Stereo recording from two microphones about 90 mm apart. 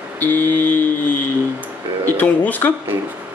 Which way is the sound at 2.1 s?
20° left (ahead or behind).